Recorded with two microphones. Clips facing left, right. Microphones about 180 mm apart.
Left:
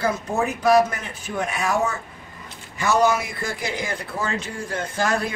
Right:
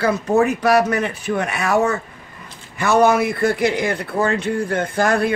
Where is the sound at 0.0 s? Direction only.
70° right (ahead or behind).